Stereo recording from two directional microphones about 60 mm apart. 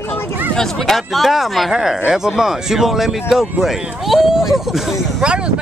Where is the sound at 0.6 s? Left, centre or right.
Centre.